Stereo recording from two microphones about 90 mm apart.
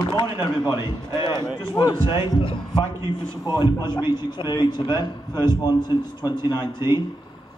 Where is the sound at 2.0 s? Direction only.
65° left (ahead or behind).